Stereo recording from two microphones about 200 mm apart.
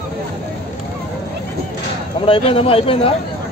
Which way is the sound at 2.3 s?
30° left (ahead or behind).